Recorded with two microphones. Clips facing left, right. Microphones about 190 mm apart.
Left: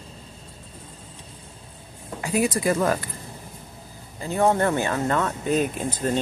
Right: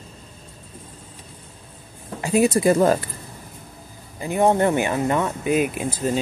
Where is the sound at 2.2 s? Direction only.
25° right (ahead or behind).